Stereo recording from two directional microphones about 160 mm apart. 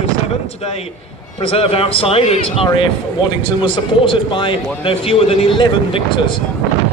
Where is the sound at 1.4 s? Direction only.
35° left (ahead or behind).